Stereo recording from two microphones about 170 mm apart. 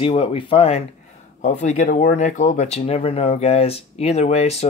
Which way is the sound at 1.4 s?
45° left (ahead or behind).